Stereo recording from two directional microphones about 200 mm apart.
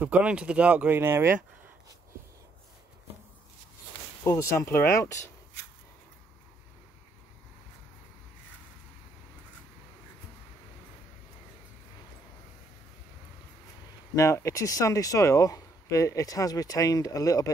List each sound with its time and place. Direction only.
0.0 s speech: 5° right (ahead or behind)
4.2 s speech: 15° left (ahead or behind)
14.1 s speech: 15° left (ahead or behind)